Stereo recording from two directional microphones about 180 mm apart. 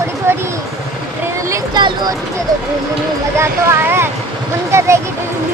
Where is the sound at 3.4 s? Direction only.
15° right (ahead or behind).